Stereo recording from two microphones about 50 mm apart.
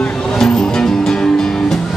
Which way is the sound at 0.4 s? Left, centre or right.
Centre.